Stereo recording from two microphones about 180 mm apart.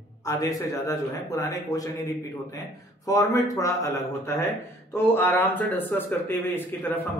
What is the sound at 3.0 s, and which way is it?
A man's voice, 20° left (ahead or behind).